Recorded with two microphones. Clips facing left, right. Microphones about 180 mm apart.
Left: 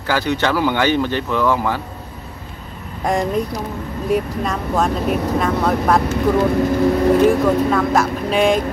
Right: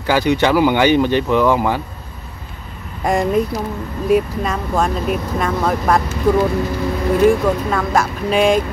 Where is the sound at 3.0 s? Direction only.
5° right (ahead or behind).